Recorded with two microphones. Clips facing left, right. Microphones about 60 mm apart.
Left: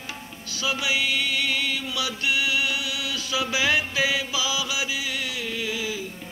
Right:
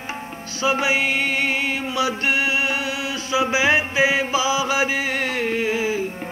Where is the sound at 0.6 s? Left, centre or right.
Right.